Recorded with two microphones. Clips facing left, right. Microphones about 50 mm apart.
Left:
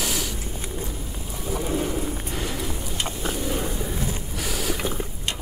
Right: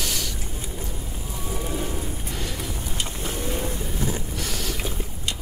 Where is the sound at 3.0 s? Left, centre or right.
Left.